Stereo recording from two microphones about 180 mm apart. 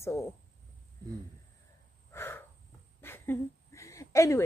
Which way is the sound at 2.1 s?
15° left (ahead or behind).